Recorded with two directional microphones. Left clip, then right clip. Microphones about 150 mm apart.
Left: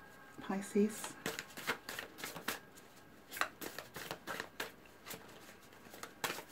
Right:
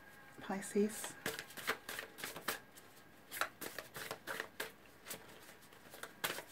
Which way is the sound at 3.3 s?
5° right (ahead or behind).